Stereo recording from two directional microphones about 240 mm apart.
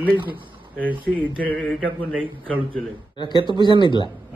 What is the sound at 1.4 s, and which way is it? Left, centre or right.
Mantra, centre.